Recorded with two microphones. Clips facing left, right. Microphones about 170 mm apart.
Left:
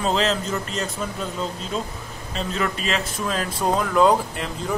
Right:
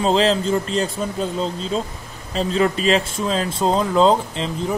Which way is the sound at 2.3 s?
35° right (ahead or behind).